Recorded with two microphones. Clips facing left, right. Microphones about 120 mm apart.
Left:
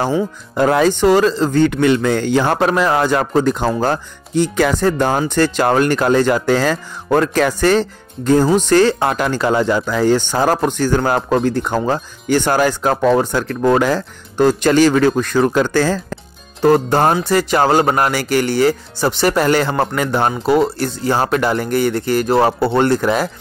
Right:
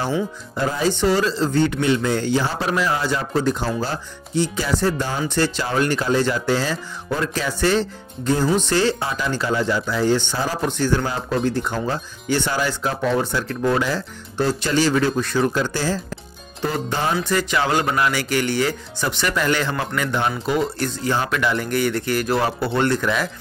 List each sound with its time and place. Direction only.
0.6 s speech: 65° left (ahead or behind); by 20.6 s 45° left (ahead or behind)
20.6 s speech: 30° left (ahead or behind)